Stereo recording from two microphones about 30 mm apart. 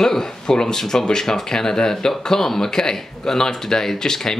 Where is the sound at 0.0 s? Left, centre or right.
Centre.